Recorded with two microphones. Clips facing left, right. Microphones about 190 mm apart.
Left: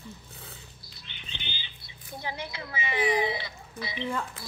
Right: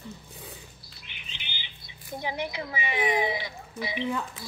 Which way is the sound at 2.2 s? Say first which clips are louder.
Right 5 dB; 15° right (ahead or behind).